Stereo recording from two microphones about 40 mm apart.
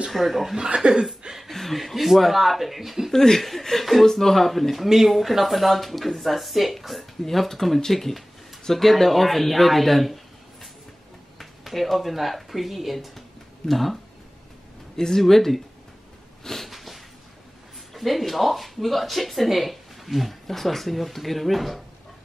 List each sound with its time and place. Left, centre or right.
0.1 s speech: centre
0.6 s speech: right
1.5 s speech: centre
3.1 s speech: centre
15.0 s speech: centre
16.4 s a sound: centre
17.9 s speech: centre